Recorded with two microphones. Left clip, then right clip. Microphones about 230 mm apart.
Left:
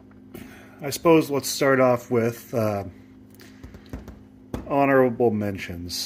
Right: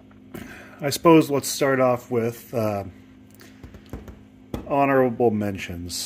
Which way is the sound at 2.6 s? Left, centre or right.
Centre.